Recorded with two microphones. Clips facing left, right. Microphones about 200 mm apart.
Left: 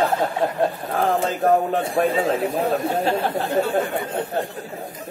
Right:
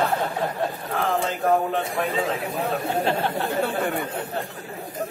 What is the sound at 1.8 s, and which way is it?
Speech, 30° left (ahead or behind).